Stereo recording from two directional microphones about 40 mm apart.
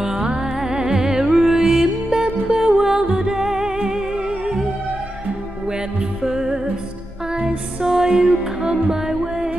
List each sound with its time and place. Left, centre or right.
0.6 s music: centre
6.2 s music: centre